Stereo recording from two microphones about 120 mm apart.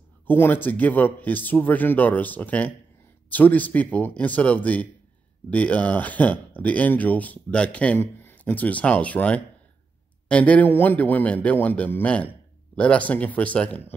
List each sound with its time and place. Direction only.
0.3 s speech: 15° left (ahead or behind)